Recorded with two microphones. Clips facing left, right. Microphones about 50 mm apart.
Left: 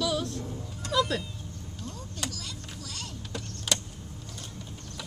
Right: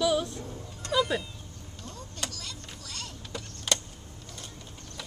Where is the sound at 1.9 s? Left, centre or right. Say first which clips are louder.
Left 1 dB; centre.